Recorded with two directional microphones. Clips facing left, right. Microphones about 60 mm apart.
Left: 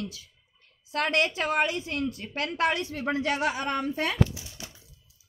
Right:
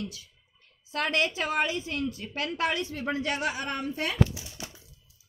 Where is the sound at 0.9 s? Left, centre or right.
Left.